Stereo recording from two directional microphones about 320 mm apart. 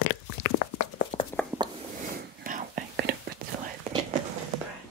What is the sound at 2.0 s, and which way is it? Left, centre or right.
Whispering, right.